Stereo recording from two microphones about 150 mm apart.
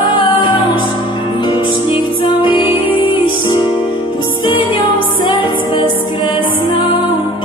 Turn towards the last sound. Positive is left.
turn(degrees=30)  # may be behind; listen again after turning